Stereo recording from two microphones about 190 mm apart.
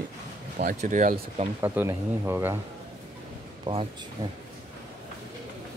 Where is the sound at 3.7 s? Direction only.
25° right (ahead or behind).